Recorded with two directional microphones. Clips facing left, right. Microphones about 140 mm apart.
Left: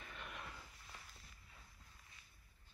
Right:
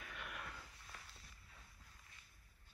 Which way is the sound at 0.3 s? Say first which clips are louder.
Right 1 dB; 10° left (ahead or behind).